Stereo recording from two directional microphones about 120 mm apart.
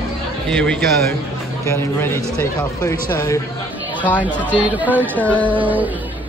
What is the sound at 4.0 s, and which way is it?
Speech, 15° left (ahead or behind).